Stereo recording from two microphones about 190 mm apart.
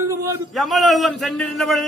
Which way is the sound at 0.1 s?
15° right (ahead or behind).